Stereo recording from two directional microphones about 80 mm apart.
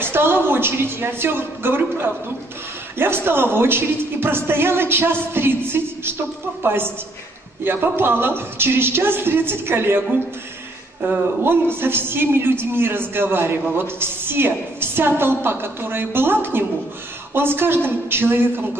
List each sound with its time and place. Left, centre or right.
0.0 s a woman's voice: right